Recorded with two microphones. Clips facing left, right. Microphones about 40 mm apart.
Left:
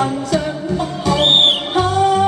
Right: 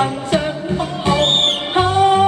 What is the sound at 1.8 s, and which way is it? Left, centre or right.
Music, right.